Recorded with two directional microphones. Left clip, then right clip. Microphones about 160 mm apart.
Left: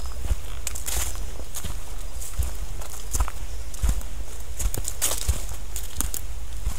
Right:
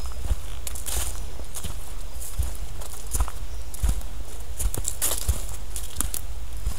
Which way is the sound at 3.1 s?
15° left (ahead or behind).